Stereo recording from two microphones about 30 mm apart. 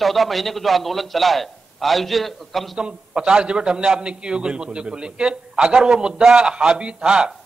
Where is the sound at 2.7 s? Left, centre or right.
Right.